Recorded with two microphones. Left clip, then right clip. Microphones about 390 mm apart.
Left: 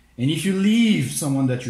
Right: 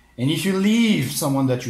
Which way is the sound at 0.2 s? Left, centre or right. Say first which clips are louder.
Right 1 dB; centre.